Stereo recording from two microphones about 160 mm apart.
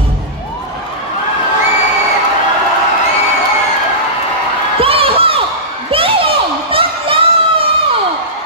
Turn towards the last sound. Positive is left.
turn(degrees=-35)  # may be behind; listen again after turning